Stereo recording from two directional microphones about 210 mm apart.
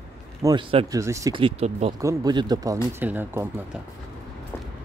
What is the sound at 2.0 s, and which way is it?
Speech, 15° right (ahead or behind).